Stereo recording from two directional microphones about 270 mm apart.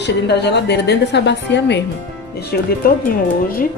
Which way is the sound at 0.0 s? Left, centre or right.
Left.